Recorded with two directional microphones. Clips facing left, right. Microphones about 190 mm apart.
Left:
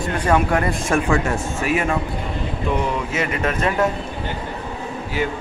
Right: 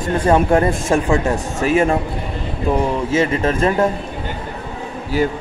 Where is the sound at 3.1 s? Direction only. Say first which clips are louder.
Right 6 dB; 30° right (ahead or behind).